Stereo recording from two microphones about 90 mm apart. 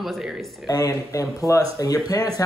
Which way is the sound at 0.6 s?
45° left (ahead or behind).